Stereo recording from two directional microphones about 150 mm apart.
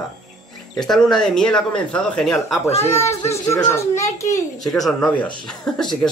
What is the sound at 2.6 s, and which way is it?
Speech, 45° left (ahead or behind).